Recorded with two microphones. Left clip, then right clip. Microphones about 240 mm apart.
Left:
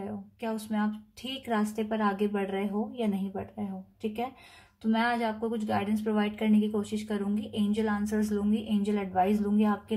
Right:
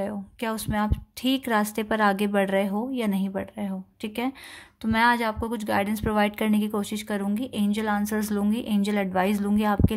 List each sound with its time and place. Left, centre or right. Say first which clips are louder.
0.4 s a woman's voice: right 5 dB; right
4.9 s a woman's voice: right 7 dB; right